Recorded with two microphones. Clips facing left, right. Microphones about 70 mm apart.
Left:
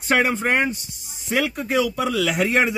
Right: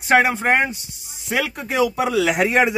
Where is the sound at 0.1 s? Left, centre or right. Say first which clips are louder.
Right 3 dB; centre.